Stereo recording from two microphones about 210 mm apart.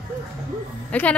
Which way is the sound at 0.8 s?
5° left (ahead or behind).